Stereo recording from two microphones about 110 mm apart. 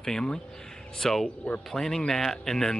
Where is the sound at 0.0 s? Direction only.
5° left (ahead or behind).